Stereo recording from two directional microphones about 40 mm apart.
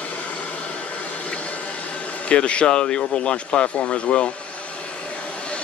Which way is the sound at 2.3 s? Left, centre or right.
Left.